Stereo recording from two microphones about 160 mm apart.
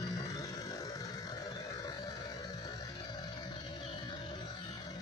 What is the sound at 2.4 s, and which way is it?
Music, 25° left (ahead or behind).